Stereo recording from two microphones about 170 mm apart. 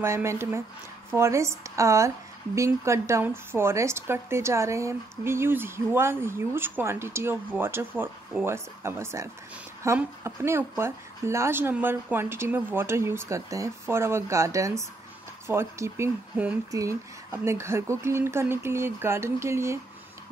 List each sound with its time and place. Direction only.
0.0 s speech: 15° right (ahead or behind)